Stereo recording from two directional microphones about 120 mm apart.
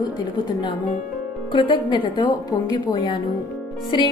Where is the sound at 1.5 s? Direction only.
45° left (ahead or behind).